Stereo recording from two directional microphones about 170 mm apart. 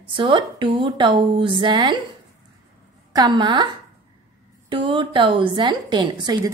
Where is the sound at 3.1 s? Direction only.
25° right (ahead or behind).